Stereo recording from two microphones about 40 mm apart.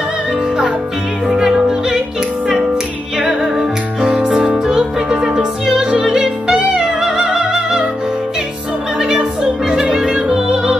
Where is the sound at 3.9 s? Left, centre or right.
Right.